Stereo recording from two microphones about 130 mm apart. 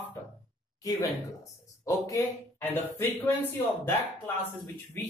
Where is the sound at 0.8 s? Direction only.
25° left (ahead or behind).